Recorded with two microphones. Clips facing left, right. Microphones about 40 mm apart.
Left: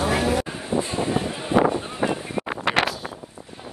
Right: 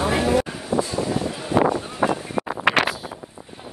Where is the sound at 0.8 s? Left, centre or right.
Left.